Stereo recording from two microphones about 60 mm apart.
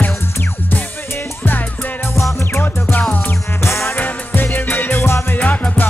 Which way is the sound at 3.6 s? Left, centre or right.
Left.